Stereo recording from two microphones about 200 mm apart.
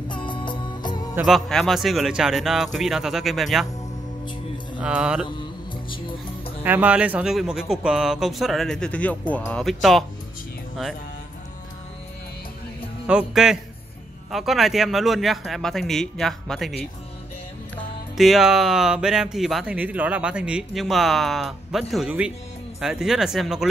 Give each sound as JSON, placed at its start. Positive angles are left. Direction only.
{"t": 0.1, "sound": "music", "side_deg": 25}
{"t": 1.1, "sound": "speech", "side_deg": 0}
{"t": 4.7, "sound": "speech", "side_deg": -5}
{"t": 5.4, "sound": "music", "side_deg": 25}
{"t": 6.6, "sound": "speech", "side_deg": -10}
{"t": 13.0, "sound": "speech", "side_deg": -5}
{"t": 18.1, "sound": "speech", "side_deg": 0}